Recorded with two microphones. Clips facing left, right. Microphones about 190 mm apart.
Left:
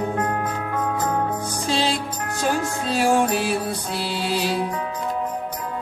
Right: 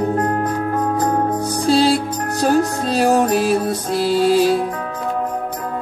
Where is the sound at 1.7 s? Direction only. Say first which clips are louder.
Right 9 dB; 35° right (ahead or behind).